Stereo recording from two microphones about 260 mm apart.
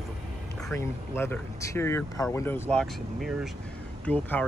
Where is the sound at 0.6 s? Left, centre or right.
Centre.